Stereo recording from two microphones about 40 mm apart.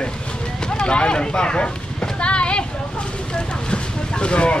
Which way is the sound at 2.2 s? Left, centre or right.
Left.